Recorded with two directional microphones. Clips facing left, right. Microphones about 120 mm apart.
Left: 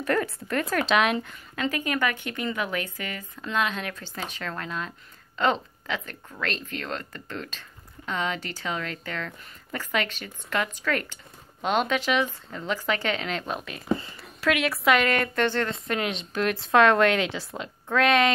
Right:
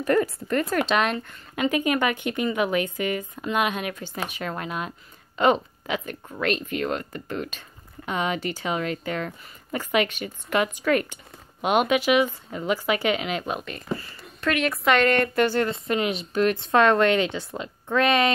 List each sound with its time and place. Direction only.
0.0 s a woman's voice: 5° right (ahead or behind)
1.5 s a woman's voice: 15° right (ahead or behind)